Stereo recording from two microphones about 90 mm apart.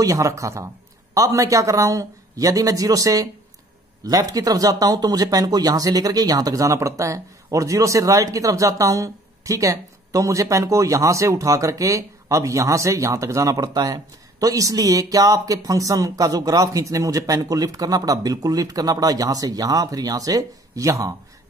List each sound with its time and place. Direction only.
0.0 s speech: 35° right (ahead or behind)